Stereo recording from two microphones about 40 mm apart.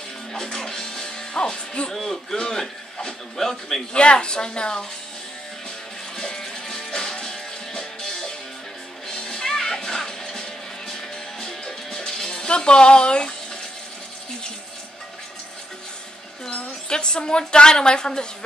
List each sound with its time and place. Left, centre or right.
0.3 s speech: centre
3.9 s a woman's voice: left
6.1 s music: centre
16.9 s a woman's voice: left